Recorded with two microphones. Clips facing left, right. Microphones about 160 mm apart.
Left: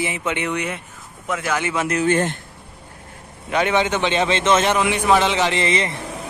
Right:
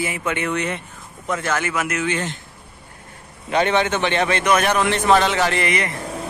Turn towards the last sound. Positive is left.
turn(degrees=25)  # may be behind; listen again after turning